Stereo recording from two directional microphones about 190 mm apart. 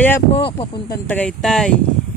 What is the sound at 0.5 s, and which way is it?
Speech, 30° left (ahead or behind).